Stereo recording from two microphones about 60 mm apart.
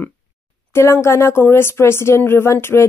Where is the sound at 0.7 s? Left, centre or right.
Left.